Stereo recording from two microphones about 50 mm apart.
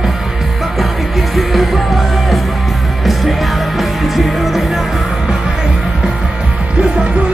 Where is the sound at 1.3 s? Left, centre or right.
Centre.